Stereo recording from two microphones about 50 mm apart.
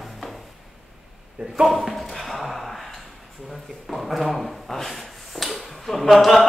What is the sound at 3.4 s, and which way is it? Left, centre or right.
Rub, centre.